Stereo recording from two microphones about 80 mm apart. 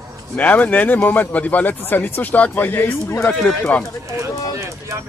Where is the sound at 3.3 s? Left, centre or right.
Centre.